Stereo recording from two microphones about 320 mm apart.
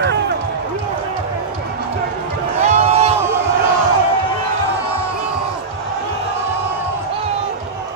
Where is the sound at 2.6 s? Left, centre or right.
Right.